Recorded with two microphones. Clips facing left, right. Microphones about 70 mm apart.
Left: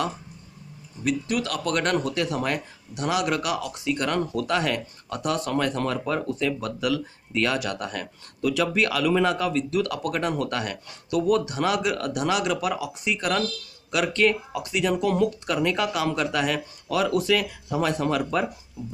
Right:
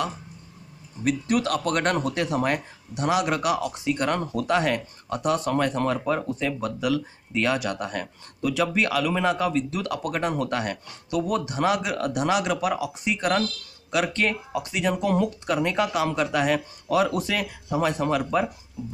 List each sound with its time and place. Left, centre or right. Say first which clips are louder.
1.0 s speech: right 2 dB; right; by 18.5 s centre